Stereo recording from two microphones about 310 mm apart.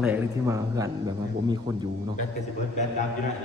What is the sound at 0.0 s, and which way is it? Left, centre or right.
Speech, centre.